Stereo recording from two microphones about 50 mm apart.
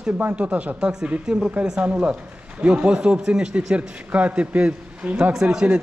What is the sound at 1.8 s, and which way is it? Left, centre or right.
A man's voice, right.